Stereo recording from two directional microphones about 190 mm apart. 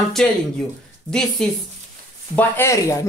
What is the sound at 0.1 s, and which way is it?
Speech, centre (ahead or behind).